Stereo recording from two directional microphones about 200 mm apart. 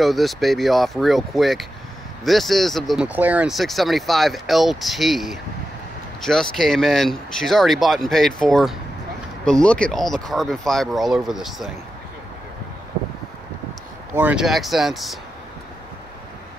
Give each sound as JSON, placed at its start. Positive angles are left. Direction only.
{"t": 0.0, "sound": "speech", "side_deg": 0}
{"t": 14.1, "sound": "speech", "side_deg": -5}